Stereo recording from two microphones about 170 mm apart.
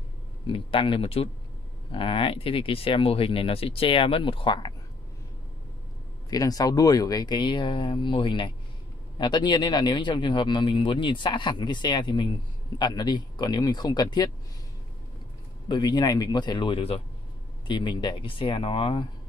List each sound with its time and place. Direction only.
0.5 s speech: 30° left (ahead or behind)
6.3 s speech: 20° left (ahead or behind)
15.7 s speech: 25° left (ahead or behind)